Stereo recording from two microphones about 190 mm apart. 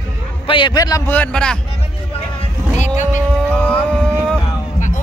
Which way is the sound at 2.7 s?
40° left (ahead or behind).